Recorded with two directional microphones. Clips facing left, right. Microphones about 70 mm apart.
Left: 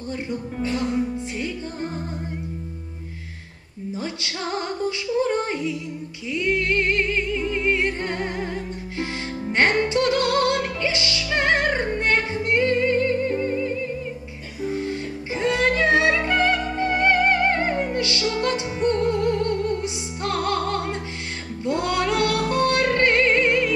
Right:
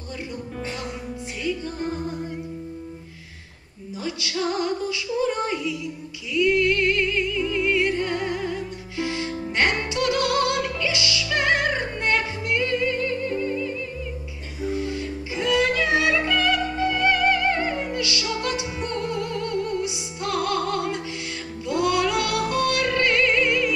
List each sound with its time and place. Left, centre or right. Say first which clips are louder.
4.2 s female singing: right 7 dB; left
6.3 s music: right 2 dB; left
14.8 s music: even; left